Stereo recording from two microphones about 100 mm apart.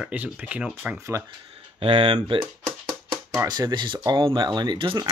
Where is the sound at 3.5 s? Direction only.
45° right (ahead or behind).